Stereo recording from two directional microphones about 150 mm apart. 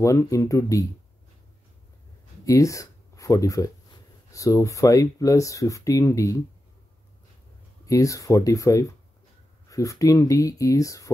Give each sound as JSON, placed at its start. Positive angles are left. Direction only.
{"t": 0.0, "sound": "speech", "side_deg": 20}
{"t": 2.4, "sound": "speech", "side_deg": 20}
{"t": 7.8, "sound": "speech", "side_deg": 20}